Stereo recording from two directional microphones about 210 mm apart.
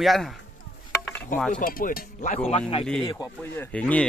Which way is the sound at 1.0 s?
5° left (ahead or behind).